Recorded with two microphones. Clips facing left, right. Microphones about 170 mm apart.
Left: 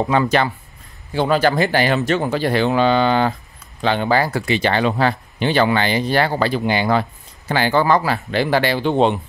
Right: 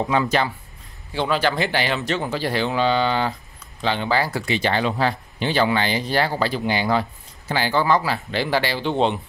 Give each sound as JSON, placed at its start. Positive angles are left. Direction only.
{"t": 0.1, "sound": "speech", "side_deg": 60}
{"t": 1.1, "sound": "speech", "side_deg": 45}